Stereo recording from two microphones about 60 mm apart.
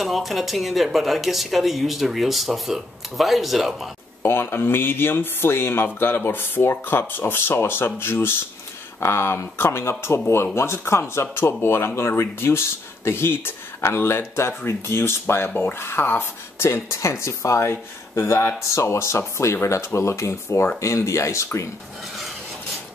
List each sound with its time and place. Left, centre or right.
0.0 s speech: centre
4.2 s speech: left
20.8 s speech: left